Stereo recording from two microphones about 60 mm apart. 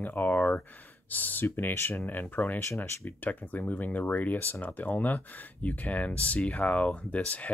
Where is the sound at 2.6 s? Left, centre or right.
Left.